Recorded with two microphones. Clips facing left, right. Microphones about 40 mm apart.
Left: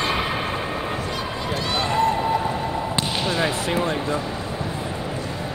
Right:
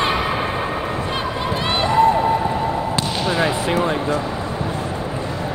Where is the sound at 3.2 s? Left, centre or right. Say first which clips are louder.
Right 5 dB; centre.